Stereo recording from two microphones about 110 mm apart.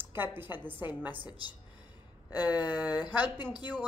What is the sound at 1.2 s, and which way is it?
Speech, 40° left (ahead or behind).